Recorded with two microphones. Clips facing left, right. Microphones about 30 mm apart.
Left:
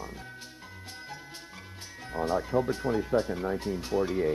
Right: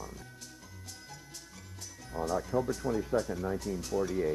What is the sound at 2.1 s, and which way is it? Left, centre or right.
Speech, left.